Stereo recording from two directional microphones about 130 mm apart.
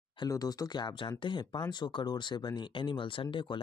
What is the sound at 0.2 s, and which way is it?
Speech, 30° left (ahead or behind).